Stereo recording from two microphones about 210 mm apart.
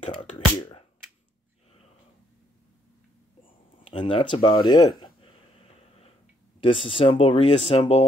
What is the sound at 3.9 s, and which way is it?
Speech, 25° left (ahead or behind).